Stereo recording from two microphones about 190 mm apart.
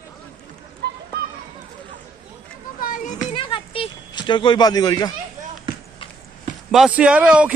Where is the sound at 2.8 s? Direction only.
50° left (ahead or behind).